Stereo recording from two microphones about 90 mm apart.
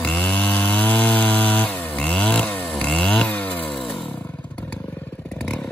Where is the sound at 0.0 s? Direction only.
15° left (ahead or behind).